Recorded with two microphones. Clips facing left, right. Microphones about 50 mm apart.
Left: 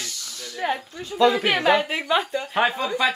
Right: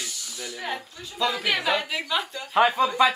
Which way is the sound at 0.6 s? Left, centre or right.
Left.